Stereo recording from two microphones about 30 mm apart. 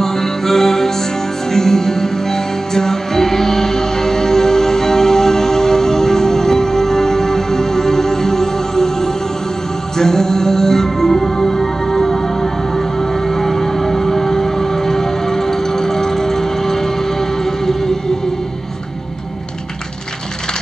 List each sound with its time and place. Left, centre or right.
0.0 s music: centre